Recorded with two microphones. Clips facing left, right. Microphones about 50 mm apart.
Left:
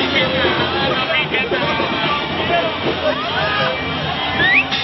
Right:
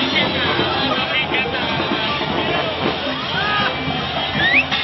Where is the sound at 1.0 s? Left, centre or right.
Centre.